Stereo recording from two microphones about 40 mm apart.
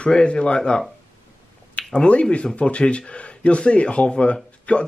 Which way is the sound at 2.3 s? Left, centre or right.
Left.